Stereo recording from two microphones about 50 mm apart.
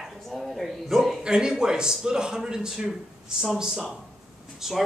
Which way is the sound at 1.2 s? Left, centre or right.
Centre.